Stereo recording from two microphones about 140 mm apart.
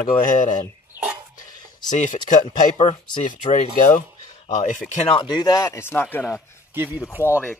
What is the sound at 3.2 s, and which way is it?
Speech, 60° left (ahead or behind).